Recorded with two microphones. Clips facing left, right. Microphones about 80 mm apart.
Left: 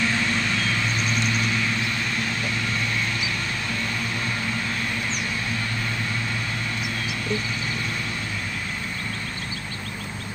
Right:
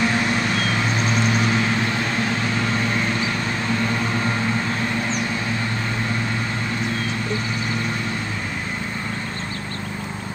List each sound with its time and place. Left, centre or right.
0.0 s vehicle: right